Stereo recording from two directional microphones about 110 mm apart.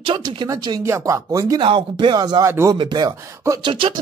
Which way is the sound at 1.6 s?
50° right (ahead or behind).